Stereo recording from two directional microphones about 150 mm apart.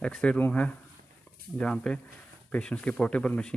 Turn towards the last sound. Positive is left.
turn(degrees=5)  # may be behind; listen again after turning